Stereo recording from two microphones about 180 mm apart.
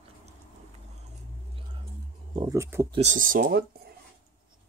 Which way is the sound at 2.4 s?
15° right (ahead or behind).